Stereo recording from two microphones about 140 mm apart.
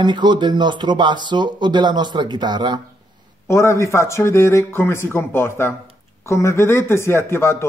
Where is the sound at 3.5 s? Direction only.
20° left (ahead or behind).